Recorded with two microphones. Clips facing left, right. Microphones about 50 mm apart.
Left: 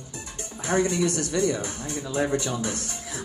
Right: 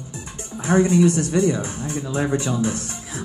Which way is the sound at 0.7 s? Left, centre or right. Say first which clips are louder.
Right 7 dB; right.